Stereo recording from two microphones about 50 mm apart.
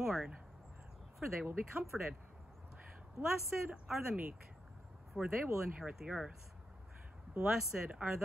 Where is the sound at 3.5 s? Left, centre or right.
Centre.